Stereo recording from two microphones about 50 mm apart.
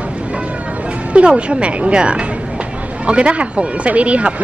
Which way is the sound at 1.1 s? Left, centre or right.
Right.